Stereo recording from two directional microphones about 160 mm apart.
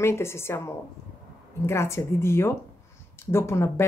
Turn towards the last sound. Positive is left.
turn(degrees=15)  # may be behind; listen again after turning